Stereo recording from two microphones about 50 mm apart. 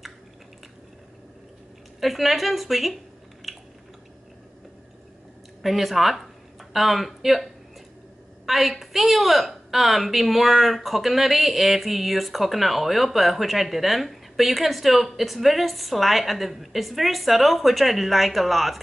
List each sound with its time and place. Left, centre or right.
2.0 s a woman's voice: centre
3.4 s chewing: centre
5.6 s a woman's voice: centre
8.5 s a woman's voice: centre